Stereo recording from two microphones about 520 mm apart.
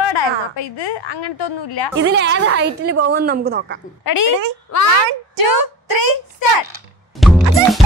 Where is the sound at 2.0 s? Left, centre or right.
Right.